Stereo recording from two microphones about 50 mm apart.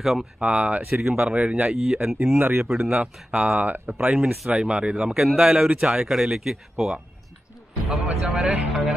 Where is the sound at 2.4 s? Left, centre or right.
Right.